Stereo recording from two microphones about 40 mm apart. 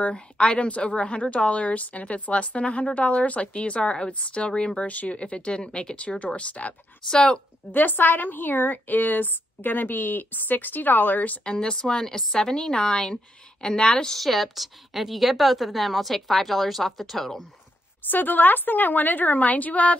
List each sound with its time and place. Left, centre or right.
0.0 s a woman's voice: left
4.7 s a woman's voice: left
7.7 s a woman's voice: left
11.4 s a woman's voice: centre
14.2 s a woman's voice: centre
18.0 s a woman's voice: left